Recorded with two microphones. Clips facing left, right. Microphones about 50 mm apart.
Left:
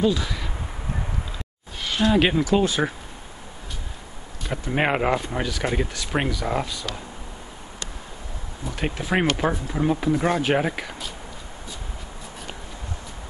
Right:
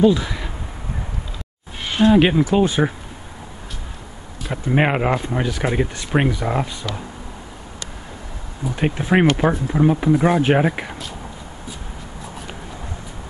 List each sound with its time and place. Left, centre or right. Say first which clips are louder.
0.0 s speech: right 6 dB; centre
1.8 s a sound: right 6 dB; right
2.5 s speech: right 1 dB; centre
4.4 s speech: right 5 dB; centre
8.7 s speech: right 6 dB; centre